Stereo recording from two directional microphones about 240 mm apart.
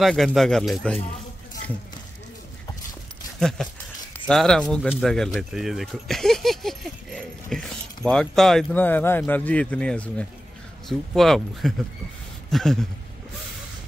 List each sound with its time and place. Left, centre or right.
0.0 s speech: centre
3.3 s speech: centre
12.4 s a sound: centre